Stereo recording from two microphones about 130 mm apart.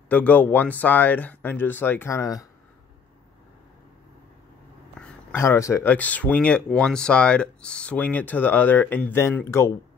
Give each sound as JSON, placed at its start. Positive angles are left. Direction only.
{"t": 0.1, "sound": "speech", "side_deg": 10}
{"t": 5.3, "sound": "speech", "side_deg": 20}
{"t": 5.9, "sound": "speech", "side_deg": 10}